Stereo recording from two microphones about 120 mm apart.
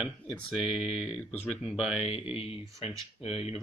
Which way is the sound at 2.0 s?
55° left (ahead or behind).